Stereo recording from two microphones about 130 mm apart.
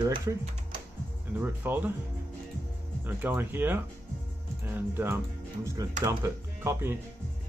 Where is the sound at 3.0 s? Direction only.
15° right (ahead or behind).